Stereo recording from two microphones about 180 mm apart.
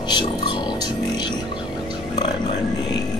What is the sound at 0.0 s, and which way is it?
Music, 25° left (ahead or behind).